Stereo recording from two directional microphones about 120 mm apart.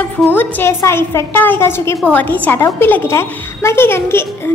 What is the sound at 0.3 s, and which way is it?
A woman's voice, 15° left (ahead or behind).